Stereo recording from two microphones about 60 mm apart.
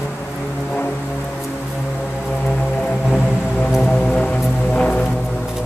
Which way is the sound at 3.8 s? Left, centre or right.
Centre.